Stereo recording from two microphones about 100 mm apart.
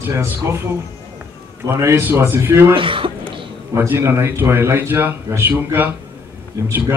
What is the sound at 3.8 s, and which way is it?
A man's voice, 25° right (ahead or behind).